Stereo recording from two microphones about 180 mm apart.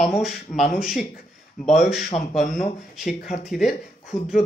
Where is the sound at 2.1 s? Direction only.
30° left (ahead or behind).